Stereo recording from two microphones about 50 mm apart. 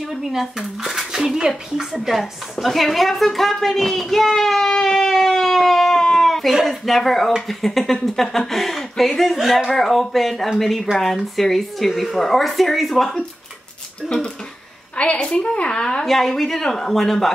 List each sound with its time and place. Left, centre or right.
0.1 s a woman's voice: centre
15.0 s a woman's voice: left
16.1 s a woman's voice: centre